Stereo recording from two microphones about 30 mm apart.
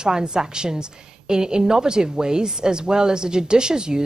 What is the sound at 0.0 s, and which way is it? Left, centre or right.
A woman's voice, right.